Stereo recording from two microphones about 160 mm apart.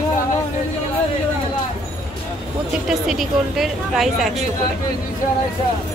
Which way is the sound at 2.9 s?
Centre (ahead or behind).